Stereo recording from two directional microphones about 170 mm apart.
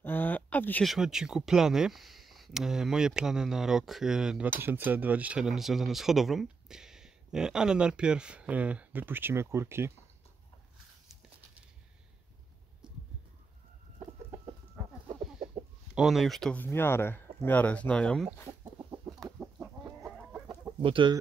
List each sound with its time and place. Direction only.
0.0 s a sound: 10° left (ahead or behind)
0.8 s speech: 5° right (ahead or behind)
12.8 s a sound: 5° right (ahead or behind)
13.9 s chicken: 25° right (ahead or behind)
15.9 s speech: centre (ahead or behind)
18.6 s chicken: 20° right (ahead or behind)
19.2 s chicken: centre (ahead or behind)
20.8 s speech: 30° right (ahead or behind)